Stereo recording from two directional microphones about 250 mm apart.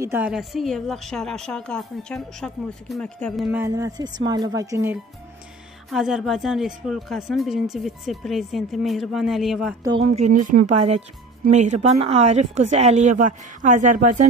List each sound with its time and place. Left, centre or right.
0.0 s a woman's voice: centre
9.8 s speech: right
10.2 s speech: right